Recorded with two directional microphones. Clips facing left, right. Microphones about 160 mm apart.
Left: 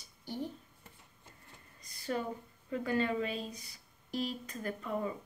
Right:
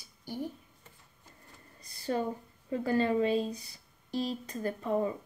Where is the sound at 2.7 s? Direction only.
30° right (ahead or behind).